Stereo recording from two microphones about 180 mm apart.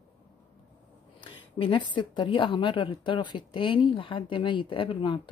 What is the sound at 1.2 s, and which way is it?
A woman's voice, 30° left (ahead or behind).